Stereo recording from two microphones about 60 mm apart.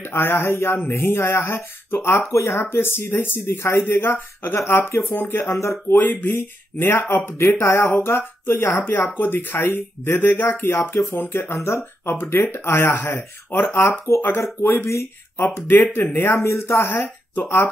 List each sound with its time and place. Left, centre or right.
0.0 s speech: left
2.6 s speech: left
5.6 s speech: left
5.9 s speech: left
8.7 s speech: left
11.1 s speech: left
11.5 s speech: left
13.7 s speech: left
15.7 s speech: left